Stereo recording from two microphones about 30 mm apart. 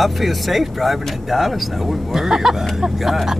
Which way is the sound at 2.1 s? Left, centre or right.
Centre.